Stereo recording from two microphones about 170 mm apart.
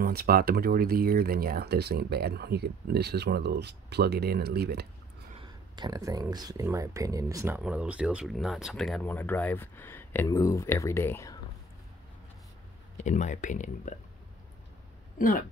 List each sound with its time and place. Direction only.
0.0 s speech: 65° right (ahead or behind)
5.8 s speech: 20° right (ahead or behind); by 11.3 s 15° left (ahead or behind)
12.9 s speech: 45° left (ahead or behind)
15.1 s speech: 55° left (ahead or behind)